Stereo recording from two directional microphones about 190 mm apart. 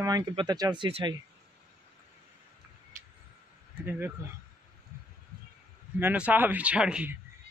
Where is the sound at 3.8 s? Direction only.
10° right (ahead or behind).